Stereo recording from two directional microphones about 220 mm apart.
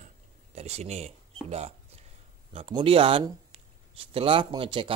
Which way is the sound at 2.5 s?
25° right (ahead or behind).